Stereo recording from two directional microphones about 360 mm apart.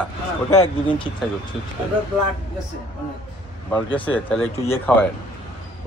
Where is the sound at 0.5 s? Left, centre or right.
Centre.